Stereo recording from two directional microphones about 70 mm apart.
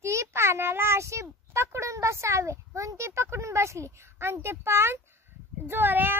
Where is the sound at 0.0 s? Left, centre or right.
Right.